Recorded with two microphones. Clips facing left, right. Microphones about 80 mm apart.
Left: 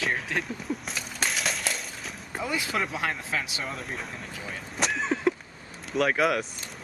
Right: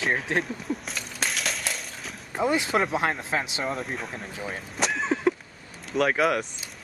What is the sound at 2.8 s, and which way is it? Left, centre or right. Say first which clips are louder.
Speech: right 5 dB; right.